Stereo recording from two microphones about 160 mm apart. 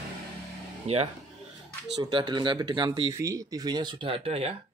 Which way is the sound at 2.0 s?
30° right (ahead or behind).